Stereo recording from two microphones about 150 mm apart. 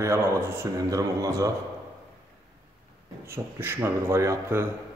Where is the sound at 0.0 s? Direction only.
15° right (ahead or behind).